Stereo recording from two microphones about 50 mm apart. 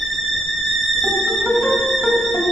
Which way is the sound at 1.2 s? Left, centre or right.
Centre.